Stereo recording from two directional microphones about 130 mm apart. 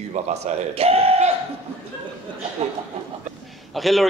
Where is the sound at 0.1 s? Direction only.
60° right (ahead or behind).